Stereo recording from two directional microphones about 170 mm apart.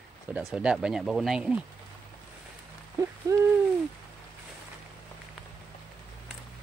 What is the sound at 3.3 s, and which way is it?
Owl, 20° right (ahead or behind).